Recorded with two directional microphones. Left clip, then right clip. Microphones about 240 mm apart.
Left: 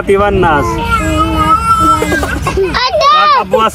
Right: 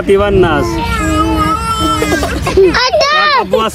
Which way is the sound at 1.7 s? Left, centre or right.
Right.